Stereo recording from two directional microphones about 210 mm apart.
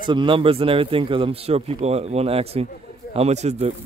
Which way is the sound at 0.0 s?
20° right (ahead or behind).